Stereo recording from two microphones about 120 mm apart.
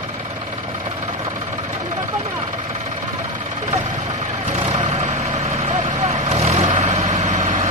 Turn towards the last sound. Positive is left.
turn(degrees=-75)  # may be behind; listen again after turning